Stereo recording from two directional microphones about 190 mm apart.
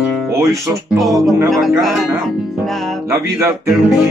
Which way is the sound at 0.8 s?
Centre (ahead or behind).